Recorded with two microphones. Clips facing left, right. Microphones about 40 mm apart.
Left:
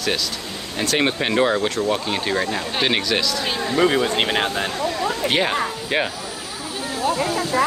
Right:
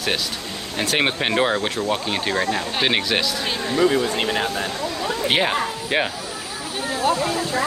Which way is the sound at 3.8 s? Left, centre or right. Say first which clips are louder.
Left 1 dB; left.